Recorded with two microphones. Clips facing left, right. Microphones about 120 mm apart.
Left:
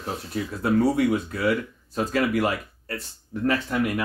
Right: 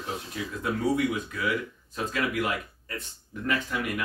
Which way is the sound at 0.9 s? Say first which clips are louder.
Left 5 dB; 35° left (ahead or behind).